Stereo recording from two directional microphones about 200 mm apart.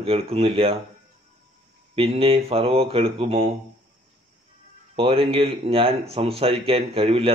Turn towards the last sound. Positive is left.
turn(degrees=-30)  # may be behind; listen again after turning